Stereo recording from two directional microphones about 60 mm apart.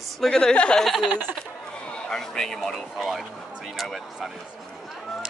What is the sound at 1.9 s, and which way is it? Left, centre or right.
Speech, centre.